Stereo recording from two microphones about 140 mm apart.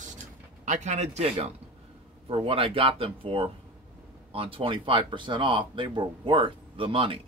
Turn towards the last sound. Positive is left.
turn(degrees=-40)  # may be behind; listen again after turning